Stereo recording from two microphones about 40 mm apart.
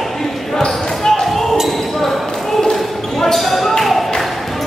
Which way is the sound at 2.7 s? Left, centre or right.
Centre.